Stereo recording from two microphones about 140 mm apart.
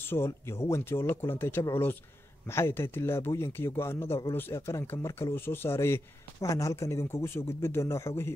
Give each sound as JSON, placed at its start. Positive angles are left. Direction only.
{"t": 0.0, "sound": "speech", "side_deg": 15}